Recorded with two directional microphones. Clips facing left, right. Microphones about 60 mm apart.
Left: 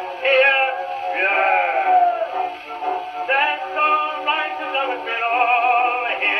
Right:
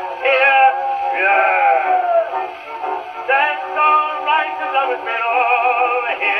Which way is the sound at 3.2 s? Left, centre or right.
Centre.